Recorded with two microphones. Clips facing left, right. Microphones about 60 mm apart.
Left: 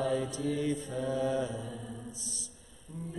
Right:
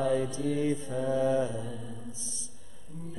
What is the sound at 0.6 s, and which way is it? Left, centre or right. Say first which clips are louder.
Mantra: right 3 dB; right.